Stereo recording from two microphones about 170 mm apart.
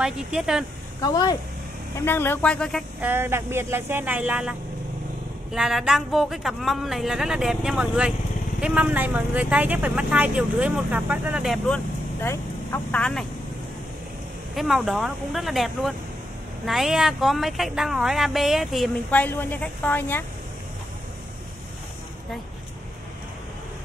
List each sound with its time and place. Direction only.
0.0 s speech: 5° right (ahead or behind)
1.0 s speech: 20° left (ahead or behind); by 2.8 s 5° left (ahead or behind)
3.0 s speech: 15° right (ahead or behind); by 13.2 s 5° left (ahead or behind)
14.5 s speech: centre (ahead or behind)